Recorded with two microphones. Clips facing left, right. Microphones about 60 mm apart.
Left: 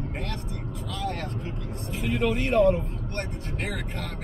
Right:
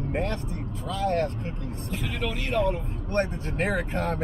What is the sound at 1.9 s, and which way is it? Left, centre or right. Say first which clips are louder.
Speech: left 6 dB; centre.